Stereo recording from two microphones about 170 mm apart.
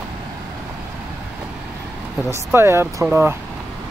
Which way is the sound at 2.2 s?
15° right (ahead or behind).